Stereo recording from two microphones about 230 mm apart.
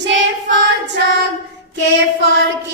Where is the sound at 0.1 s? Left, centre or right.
Right.